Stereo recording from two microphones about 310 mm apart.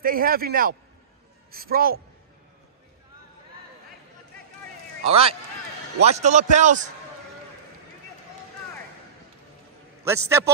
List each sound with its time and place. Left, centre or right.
0.0 s a man's voice: right
5.0 s a man's voice: centre
10.0 s a man's voice: centre